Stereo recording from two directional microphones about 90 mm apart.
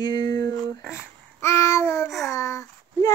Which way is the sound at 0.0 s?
50° left (ahead or behind).